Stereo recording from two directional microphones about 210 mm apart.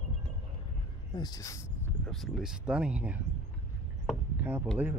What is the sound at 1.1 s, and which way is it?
Speech, 20° left (ahead or behind).